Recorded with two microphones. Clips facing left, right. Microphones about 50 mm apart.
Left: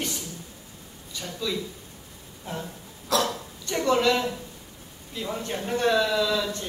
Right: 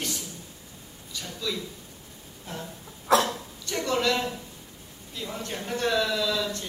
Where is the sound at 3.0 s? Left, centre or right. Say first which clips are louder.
Right 3 dB; right.